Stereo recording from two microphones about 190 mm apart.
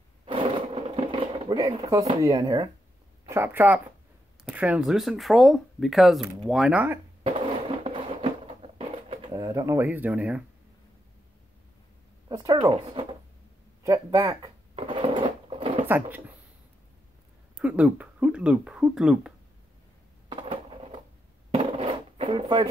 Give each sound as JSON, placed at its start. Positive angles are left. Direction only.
{"t": 0.2, "sound": "sewing machine", "side_deg": -25}
{"t": 2.2, "sound": "speech", "side_deg": -20}
{"t": 7.3, "sound": "a sound", "side_deg": -30}
{"t": 8.7, "sound": "speech", "side_deg": -30}
{"t": 12.3, "sound": "speech", "side_deg": -20}
{"t": 13.8, "sound": "speech", "side_deg": -15}
{"t": 14.2, "sound": "cash register", "side_deg": -25}
{"t": 17.6, "sound": "speech", "side_deg": -5}
{"t": 20.2, "sound": "a sound", "side_deg": -25}